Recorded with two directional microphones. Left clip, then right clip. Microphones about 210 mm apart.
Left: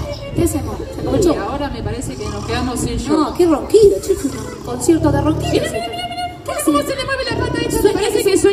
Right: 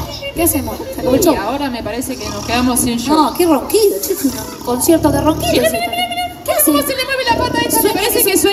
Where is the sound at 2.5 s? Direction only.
30° right (ahead or behind).